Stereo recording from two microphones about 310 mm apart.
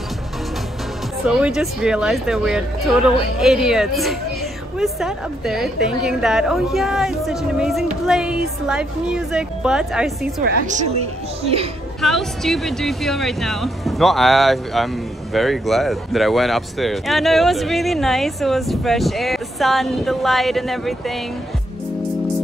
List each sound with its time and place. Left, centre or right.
1.2 s speech: centre
10.4 s a woman's voice: right
12.0 s speech: centre